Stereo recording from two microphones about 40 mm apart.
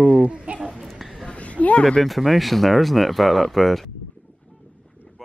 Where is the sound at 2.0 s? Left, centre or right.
Centre.